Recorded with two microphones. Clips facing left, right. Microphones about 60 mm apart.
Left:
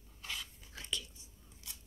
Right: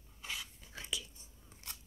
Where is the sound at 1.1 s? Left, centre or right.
Right.